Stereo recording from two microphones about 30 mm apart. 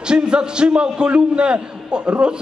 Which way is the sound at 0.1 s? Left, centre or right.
Right.